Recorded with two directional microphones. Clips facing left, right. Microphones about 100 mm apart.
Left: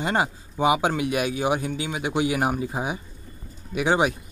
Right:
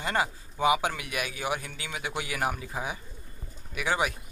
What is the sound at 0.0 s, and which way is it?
Speech, 25° left (ahead or behind).